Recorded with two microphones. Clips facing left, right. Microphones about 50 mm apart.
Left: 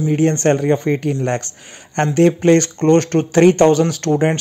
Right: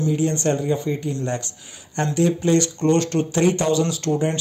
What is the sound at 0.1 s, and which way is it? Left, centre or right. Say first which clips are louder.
A man's voice: left 9 dB; left.